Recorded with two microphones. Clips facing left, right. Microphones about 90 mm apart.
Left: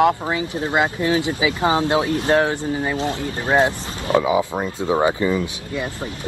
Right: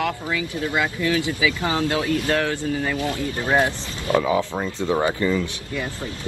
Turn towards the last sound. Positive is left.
turn(degrees=20)  # may be behind; listen again after turning